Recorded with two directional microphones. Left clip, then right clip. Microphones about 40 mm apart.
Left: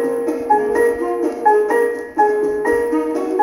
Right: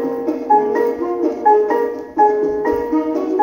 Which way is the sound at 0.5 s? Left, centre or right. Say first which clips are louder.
Right 1 dB; left.